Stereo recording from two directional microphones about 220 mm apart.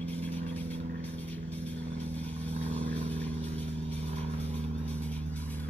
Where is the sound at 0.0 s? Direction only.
5° left (ahead or behind).